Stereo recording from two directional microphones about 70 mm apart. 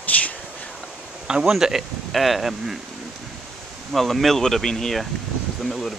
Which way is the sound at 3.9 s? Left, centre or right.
Centre.